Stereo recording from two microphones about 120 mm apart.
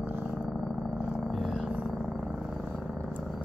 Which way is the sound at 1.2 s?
Centre (ahead or behind).